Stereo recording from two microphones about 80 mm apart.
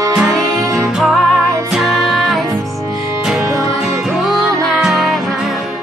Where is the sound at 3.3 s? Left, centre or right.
Right.